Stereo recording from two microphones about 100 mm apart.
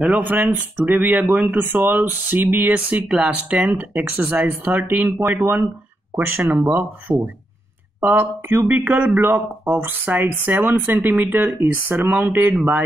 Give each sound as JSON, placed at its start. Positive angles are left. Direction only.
{"t": 0.0, "sound": "speech", "side_deg": -15}